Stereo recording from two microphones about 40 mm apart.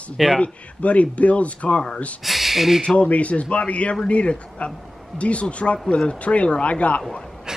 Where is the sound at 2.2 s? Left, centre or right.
Centre.